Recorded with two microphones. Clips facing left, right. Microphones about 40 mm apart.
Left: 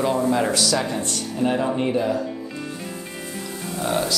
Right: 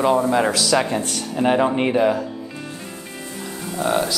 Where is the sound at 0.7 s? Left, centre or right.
Right.